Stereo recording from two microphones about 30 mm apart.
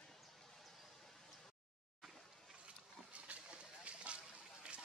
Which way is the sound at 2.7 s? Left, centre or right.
Right.